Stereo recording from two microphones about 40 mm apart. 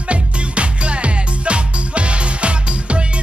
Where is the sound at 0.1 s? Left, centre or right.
Right.